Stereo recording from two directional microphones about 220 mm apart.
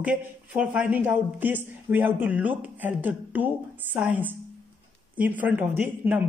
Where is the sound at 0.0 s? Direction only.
5° right (ahead or behind).